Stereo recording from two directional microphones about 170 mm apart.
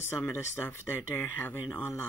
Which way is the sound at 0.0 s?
15° left (ahead or behind).